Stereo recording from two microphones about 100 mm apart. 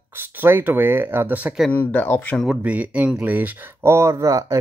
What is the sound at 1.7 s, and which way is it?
Speech, 20° left (ahead or behind).